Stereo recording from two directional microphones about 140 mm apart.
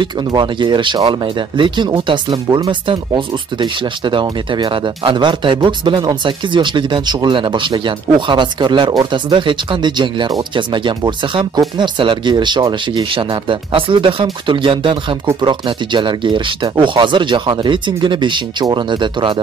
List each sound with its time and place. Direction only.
0.0 s speech: 30° right (ahead or behind)